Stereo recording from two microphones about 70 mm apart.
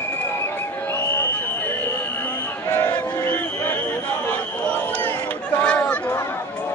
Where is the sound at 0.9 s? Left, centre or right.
Left.